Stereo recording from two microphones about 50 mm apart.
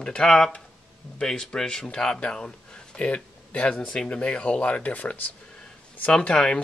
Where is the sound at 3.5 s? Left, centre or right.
Left.